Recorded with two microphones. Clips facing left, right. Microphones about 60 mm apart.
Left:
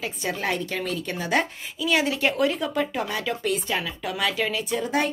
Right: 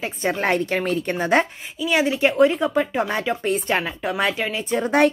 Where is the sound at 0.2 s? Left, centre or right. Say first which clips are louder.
Right 7 dB; right.